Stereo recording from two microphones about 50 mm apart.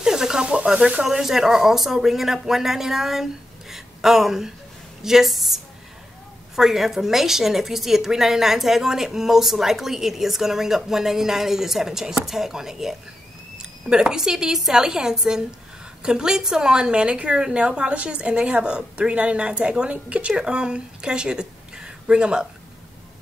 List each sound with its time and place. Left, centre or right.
0.0 s speech: centre
0.7 s a woman's voice: right
1.0 s a woman's voice: centre
3.7 s a sound: centre
5.0 s a woman's voice: centre